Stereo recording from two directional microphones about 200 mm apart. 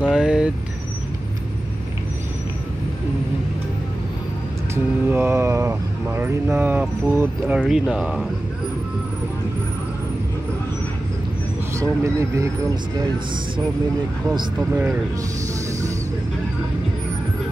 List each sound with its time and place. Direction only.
0.0 s vehicle: 5° right (ahead or behind)
5.0 s speech: 10° right (ahead or behind)
12.0 s speech: 15° right (ahead or behind)